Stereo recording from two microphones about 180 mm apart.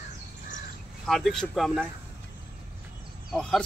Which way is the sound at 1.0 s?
Centre (ahead or behind).